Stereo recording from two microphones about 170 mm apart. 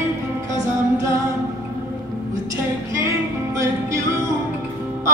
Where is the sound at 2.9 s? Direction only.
20° right (ahead or behind).